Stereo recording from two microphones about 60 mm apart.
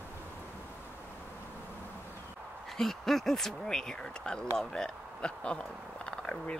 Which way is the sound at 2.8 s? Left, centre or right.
Centre.